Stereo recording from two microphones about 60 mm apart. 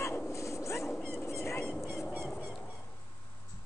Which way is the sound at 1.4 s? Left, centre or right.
Left.